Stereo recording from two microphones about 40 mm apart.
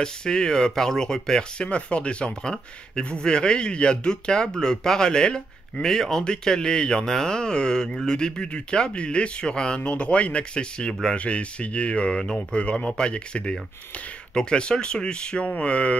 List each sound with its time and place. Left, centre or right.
0.0 s speech: centre
1.7 s speech: left
9.8 s speech: left
15.4 s speech: left